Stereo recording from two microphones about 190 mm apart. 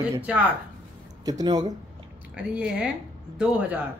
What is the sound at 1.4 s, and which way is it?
Speech, 20° right (ahead or behind).